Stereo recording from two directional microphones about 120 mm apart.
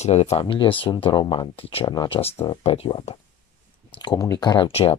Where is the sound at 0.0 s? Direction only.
65° left (ahead or behind).